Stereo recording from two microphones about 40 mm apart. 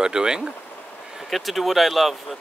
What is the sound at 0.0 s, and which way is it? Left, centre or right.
Speech, centre.